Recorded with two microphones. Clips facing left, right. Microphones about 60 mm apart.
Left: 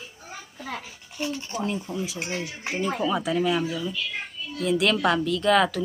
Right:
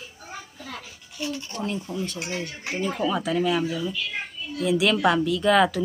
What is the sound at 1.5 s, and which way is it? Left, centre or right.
Speech, centre.